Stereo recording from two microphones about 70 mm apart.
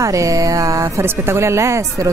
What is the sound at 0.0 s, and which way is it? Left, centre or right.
Speech, right.